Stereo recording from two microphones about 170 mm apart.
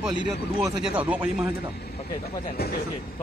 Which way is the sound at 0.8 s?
5° right (ahead or behind).